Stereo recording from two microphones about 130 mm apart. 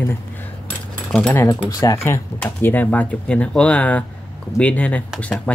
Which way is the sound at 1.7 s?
20° left (ahead or behind).